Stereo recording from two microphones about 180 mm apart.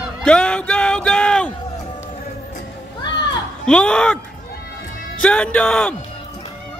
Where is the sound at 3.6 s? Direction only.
5° left (ahead or behind).